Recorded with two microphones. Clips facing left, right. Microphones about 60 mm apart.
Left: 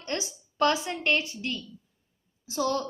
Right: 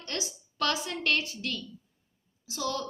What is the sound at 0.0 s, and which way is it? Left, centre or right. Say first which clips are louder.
A woman's voice: left 4 dB; left.